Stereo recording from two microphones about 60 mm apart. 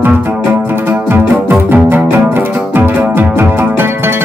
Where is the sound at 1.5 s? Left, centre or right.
Right.